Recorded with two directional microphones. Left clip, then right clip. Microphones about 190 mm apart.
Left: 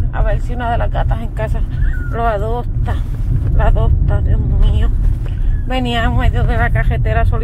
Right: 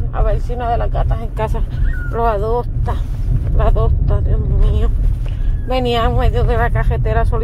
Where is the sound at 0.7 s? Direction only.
10° left (ahead or behind).